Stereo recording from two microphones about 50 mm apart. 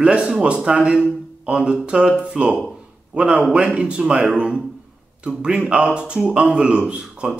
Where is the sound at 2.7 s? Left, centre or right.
Right.